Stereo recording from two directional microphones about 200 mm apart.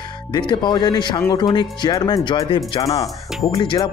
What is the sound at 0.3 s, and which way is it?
Speech, 20° left (ahead or behind).